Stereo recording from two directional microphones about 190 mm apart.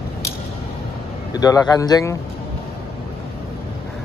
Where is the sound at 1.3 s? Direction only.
20° left (ahead or behind).